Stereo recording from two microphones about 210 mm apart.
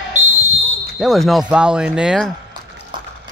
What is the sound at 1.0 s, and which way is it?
A man's voice, centre (ahead or behind).